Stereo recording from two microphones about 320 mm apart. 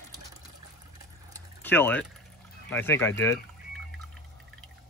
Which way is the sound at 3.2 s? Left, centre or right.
Centre.